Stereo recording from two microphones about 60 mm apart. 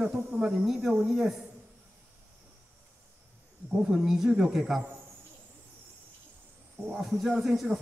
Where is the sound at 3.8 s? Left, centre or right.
Centre.